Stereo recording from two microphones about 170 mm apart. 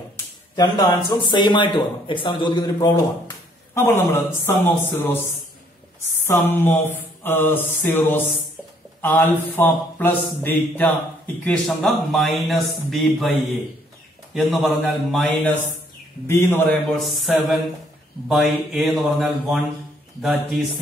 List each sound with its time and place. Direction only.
0.6 s a man's voice: 20° left (ahead or behind)
6.2 s mantra: 15° left (ahead or behind)
9.6 s mantra: 10° left (ahead or behind)
11.4 s a man's voice: 5° left (ahead or behind)
14.3 s a man's voice: centre (ahead or behind)
16.3 s mantra: 15° left (ahead or behind)
17.0 s a man's voice: centre (ahead or behind)